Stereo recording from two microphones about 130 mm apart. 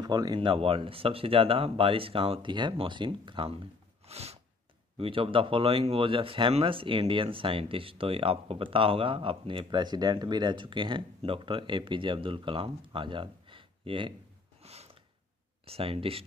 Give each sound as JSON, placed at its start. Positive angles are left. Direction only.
{"t": 0.0, "sound": "speech", "side_deg": -30}
{"t": 14.6, "sound": "a sound", "side_deg": -55}
{"t": 15.6, "sound": "speech", "side_deg": -45}